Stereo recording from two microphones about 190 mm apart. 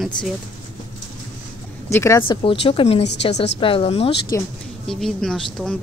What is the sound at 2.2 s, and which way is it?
A woman's voice, 30° left (ahead or behind).